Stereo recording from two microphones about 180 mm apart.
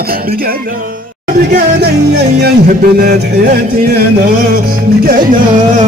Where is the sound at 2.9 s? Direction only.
60° right (ahead or behind).